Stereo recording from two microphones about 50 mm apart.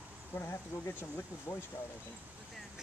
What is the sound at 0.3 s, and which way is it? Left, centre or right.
Speech, left.